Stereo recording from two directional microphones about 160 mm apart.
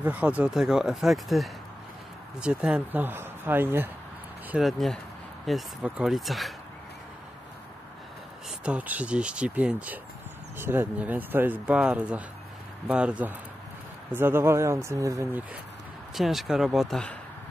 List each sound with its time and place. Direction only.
0.0 s speech: 10° right (ahead or behind)
4.5 s speech: centre (ahead or behind)
8.5 s speech: 5° right (ahead or behind)
16.2 s speech: centre (ahead or behind)